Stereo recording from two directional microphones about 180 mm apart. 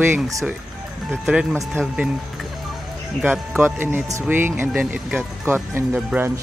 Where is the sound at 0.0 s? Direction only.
15° right (ahead or behind).